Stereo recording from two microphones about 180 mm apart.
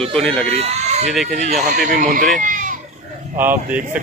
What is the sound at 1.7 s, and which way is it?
Speech, 50° right (ahead or behind).